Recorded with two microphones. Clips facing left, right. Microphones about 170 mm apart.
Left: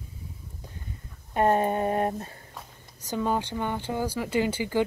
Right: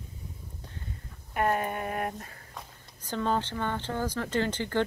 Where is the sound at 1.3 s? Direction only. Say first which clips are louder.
Left 5 dB; 30° left (ahead or behind).